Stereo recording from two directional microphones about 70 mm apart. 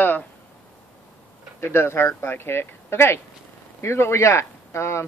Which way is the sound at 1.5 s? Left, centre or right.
Left.